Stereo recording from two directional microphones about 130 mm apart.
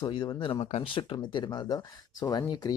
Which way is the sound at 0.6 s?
50° left (ahead or behind).